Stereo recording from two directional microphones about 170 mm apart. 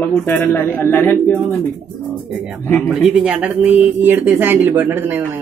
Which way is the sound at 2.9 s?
5° right (ahead or behind).